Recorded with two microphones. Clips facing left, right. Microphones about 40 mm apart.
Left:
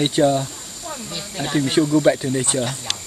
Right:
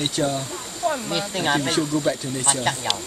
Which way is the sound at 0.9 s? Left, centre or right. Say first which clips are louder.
Right 4 dB; right.